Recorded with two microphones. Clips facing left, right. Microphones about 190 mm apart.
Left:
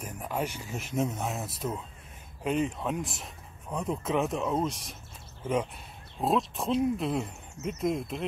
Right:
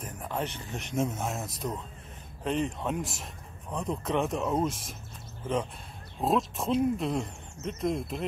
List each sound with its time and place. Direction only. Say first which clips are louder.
0.0 s speech: left 1 dB; 10° left (ahead or behind)
6.2 s speech: even; centre (ahead or behind)